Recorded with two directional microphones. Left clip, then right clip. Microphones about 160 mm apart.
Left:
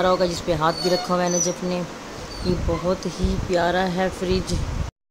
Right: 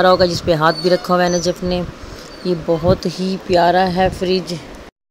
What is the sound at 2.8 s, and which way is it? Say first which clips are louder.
A woman's voice: right 8 dB; 35° right (ahead or behind).